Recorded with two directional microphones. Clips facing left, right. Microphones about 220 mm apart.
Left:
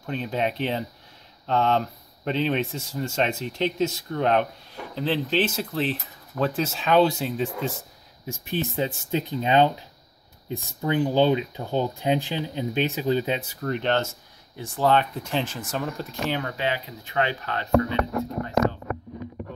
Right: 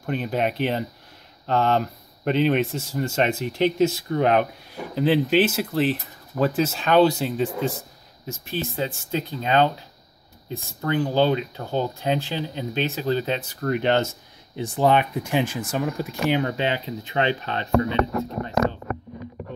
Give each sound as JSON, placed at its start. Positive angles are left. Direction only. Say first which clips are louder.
{"t": 0.0, "sound": "speech", "louder": "right 2 dB", "side_deg": -5}
{"t": 8.3, "sound": "speech", "louder": "left 1 dB", "side_deg": 20}
{"t": 13.7, "sound": "speech", "louder": "right 3 dB", "side_deg": -10}